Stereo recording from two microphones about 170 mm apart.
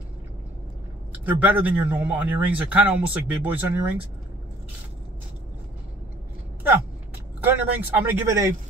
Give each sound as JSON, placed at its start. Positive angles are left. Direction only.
{"t": 1.2, "sound": "speech", "side_deg": -10}
{"t": 7.4, "sound": "speech", "side_deg": -10}